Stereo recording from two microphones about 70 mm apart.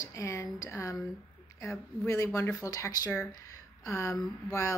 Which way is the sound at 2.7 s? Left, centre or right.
Left.